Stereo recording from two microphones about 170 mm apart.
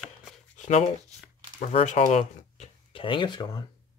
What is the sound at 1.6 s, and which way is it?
Speech, 40° left (ahead or behind).